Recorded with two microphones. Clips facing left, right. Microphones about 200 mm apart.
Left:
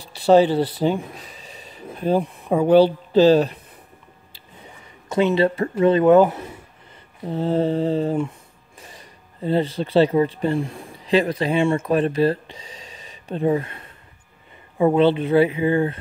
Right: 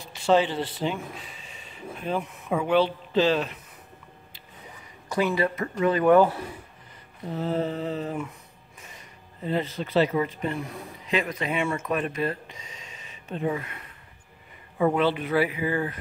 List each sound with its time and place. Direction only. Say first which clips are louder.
0.0 s speech: left 7 dB; 35° left (ahead or behind)
5.1 s speech: left 6 dB; 25° left (ahead or behind)
7.2 s mantra: left 7 dB; 30° left (ahead or behind)
8.7 s speech: left 4 dB; 35° left (ahead or behind)